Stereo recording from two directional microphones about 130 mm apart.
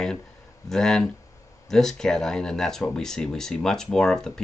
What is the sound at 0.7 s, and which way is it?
Speech, 5° left (ahead or behind).